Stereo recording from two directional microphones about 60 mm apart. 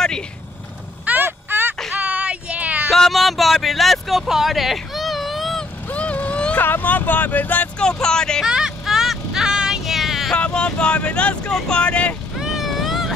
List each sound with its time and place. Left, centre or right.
1.2 s a sound: right
2.0 s a sound: right
2.9 s a sound: centre
5.9 s vehicle: left
6.6 s speech: left
8.0 s speech: centre
8.5 s vehicle: centre
10.3 s vehicle: centre
12.4 s vehicle: centre